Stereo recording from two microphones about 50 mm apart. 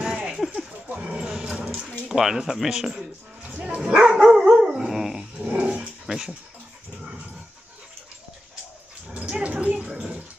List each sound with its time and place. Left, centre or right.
0.1 s a sound: centre
0.8 s dog: right
1.1 s dog: centre
1.9 s speech: centre
3.6 s dog: centre
5.4 s dog: right
9.4 s a sound: right